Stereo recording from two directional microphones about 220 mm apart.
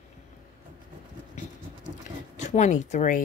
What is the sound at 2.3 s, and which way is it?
Speech, 30° left (ahead or behind).